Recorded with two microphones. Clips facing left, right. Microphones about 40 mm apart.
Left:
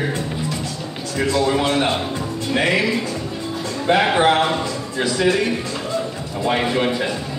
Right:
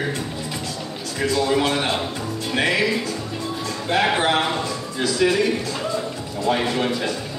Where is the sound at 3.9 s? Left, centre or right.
Left.